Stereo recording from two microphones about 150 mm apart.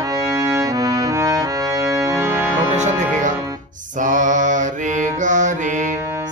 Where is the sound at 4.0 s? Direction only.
60° right (ahead or behind).